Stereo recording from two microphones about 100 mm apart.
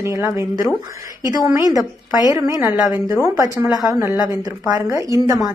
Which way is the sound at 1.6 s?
40° left (ahead or behind).